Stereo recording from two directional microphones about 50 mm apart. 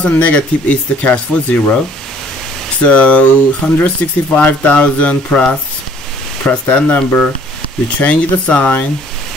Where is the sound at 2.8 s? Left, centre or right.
Left.